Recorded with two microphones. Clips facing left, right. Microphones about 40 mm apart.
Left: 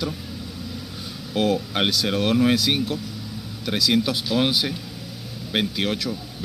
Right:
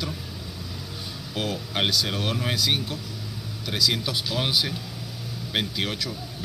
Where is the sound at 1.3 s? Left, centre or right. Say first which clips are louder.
Left 8 dB; left.